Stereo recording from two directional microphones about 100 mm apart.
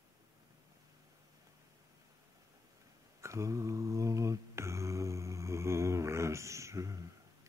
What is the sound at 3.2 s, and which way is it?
Mantra, 30° right (ahead or behind).